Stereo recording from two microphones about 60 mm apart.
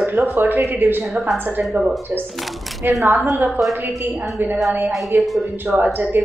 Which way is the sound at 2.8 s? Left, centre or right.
Right.